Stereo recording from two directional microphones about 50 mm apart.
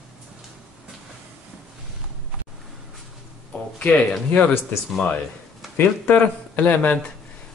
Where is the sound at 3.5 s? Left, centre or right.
Left.